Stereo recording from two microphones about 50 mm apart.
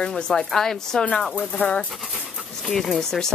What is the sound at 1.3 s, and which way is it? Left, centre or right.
Speech, left.